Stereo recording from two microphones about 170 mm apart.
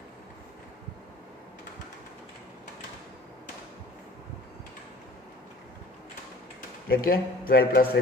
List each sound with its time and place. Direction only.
6.9 s speech: 60° left (ahead or behind)